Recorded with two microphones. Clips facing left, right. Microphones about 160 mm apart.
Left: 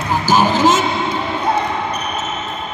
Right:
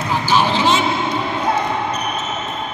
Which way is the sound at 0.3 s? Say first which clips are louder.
Left 3 dB; 45° left (ahead or behind).